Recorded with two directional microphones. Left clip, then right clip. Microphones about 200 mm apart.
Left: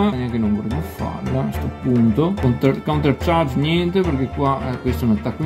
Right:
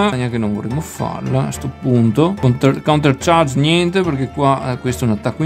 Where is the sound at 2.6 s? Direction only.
30° right (ahead or behind).